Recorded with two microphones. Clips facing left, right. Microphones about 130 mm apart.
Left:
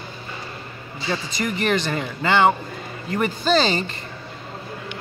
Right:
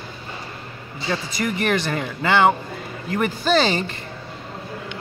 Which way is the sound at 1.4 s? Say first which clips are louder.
Right 1 dB; 5° left (ahead or behind).